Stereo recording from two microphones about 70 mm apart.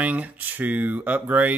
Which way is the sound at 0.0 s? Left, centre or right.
Right.